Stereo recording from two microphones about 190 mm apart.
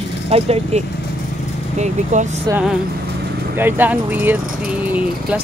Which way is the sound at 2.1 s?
40° right (ahead or behind).